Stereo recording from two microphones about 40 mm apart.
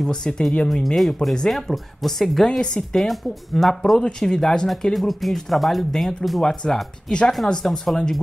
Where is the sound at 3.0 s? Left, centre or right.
Centre.